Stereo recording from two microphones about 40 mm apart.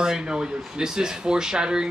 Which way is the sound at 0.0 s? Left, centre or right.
Centre.